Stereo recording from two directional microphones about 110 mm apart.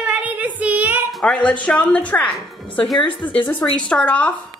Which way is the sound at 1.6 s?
10° left (ahead or behind).